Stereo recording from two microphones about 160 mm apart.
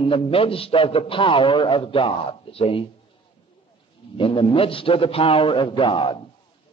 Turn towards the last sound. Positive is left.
turn(degrees=30)  # may be behind; listen again after turning